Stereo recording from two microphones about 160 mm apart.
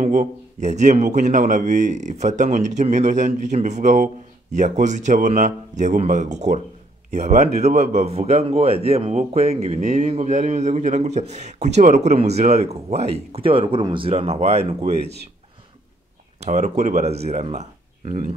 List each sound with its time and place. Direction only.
0.0 s a man's voice: 45° right (ahead or behind)
16.3 s speech: 45° right (ahead or behind)